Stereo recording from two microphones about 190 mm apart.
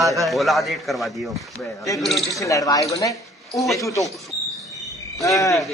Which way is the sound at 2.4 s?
15° left (ahead or behind).